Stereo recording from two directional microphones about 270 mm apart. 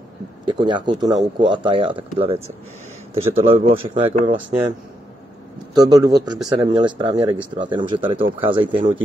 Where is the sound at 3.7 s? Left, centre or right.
Centre.